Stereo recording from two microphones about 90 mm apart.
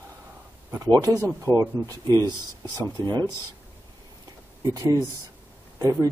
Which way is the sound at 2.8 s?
50° right (ahead or behind).